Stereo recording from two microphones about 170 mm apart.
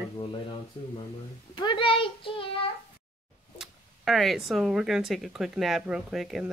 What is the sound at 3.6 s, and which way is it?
Speech, centre (ahead or behind).